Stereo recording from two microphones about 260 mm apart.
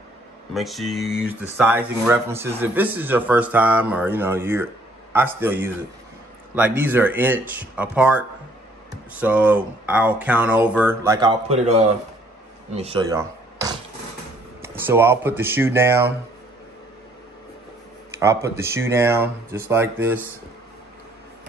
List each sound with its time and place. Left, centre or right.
0.6 s speech: centre
9.2 s speech: centre
18.1 s speech: centre